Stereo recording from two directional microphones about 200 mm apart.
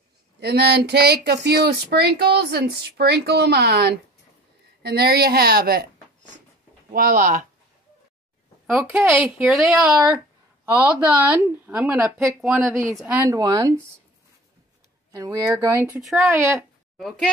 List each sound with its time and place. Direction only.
0.4 s speech: 55° right (ahead or behind)
8.6 s speech: 10° right (ahead or behind)
15.0 s speech: 15° right (ahead or behind)